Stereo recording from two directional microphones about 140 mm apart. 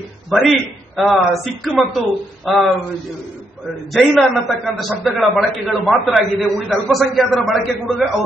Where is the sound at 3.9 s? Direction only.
Centre (ahead or behind).